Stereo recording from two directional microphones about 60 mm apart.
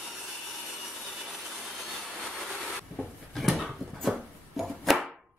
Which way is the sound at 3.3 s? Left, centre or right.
Centre.